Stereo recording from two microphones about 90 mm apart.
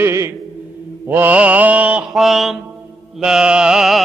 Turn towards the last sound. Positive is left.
turn(degrees=-5)  # may be behind; listen again after turning